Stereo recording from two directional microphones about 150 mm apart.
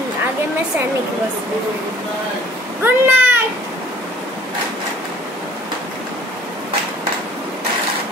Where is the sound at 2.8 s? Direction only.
15° right (ahead or behind).